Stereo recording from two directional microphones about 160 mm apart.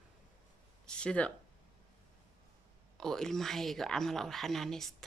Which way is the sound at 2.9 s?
5° left (ahead or behind).